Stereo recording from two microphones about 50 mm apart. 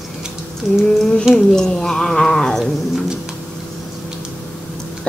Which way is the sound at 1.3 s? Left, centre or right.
Centre.